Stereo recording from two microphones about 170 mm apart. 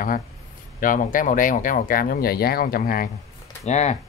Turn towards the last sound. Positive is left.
turn(degrees=40)  # may be behind; listen again after turning